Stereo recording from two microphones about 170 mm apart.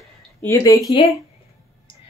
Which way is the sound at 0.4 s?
15° left (ahead or behind).